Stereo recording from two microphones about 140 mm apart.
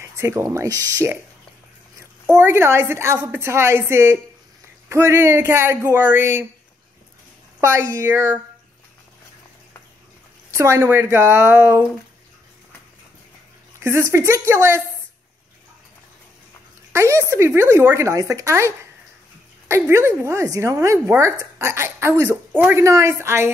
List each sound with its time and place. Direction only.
0.0 s speech: 20° right (ahead or behind)
2.3 s speech: 20° right (ahead or behind)
7.6 s speech: 20° right (ahead or behind)
10.5 s speech: 20° right (ahead or behind)
13.7 s speech: 20° right (ahead or behind)
16.9 s speech: 20° right (ahead or behind)
19.7 s speech: 20° right (ahead or behind)